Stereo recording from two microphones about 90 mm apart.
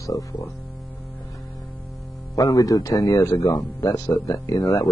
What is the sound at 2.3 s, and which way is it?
Speech, 40° left (ahead or behind).